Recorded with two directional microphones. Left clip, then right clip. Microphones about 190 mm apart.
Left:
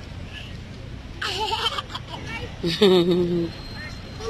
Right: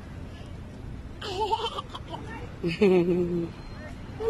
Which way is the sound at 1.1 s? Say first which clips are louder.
Left 3 dB; 25° right (ahead or behind).